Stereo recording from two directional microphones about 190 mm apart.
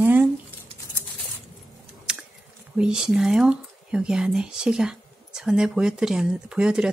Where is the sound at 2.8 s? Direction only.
5° right (ahead or behind).